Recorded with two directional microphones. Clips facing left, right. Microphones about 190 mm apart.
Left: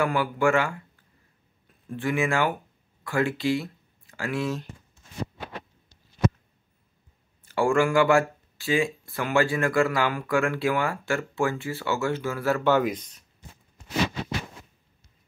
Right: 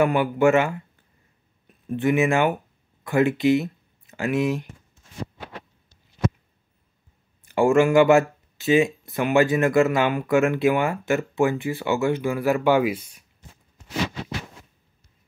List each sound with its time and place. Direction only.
0.0 s speech: 20° right (ahead or behind)
1.9 s speech: 20° right (ahead or behind)
7.4 s speech: 20° right (ahead or behind)